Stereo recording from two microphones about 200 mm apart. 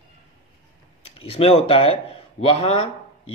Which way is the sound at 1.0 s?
30° left (ahead or behind).